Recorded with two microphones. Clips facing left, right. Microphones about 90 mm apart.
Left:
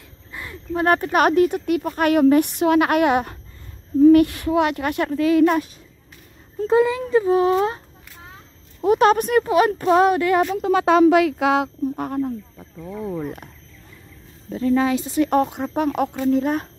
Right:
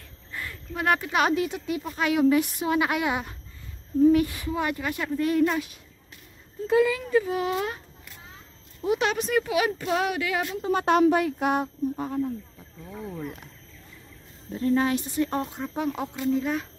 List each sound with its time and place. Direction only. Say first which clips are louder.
0.3 s a sound: left 1 dB; 15° left (ahead or behind)
0.7 s speech: left 6 dB; 40° left (ahead or behind); by 5.6 s 90° left
6.7 s speech: left 4 dB; 30° left (ahead or behind)
8.8 s speech: left 9 dB; 45° left (ahead or behind)
10.5 s speech: left 6 dB; 85° left
12.0 s speech: left 4 dB; 55° left (ahead or behind)
15.0 s speech: left 8 dB; 85° left; by 16.6 s 55° left (ahead or behind)